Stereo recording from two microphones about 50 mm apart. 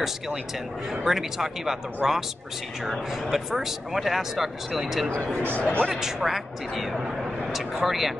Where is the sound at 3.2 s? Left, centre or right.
Centre.